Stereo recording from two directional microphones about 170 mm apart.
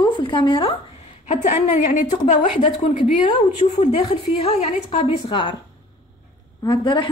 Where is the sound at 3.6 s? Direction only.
40° left (ahead or behind).